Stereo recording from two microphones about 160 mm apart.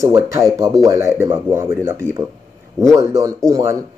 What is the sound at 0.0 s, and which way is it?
Speech, 20° right (ahead or behind).